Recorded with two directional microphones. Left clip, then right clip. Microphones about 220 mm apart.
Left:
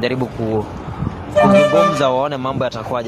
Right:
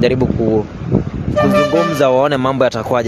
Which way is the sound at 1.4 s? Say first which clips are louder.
Left 2 dB; 20° right (ahead or behind).